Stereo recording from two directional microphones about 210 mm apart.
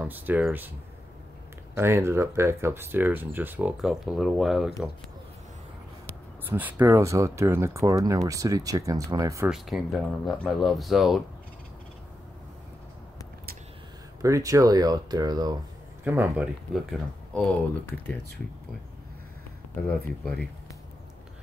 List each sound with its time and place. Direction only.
0.0 s speech: 10° right (ahead or behind)
1.8 s speech: 10° right (ahead or behind)
6.5 s speech: 10° right (ahead or behind)
9.5 s speech: centre (ahead or behind)
14.2 s speech: 15° right (ahead or behind)
16.0 s speech: 10° right (ahead or behind)
17.3 s speech: 5° left (ahead or behind)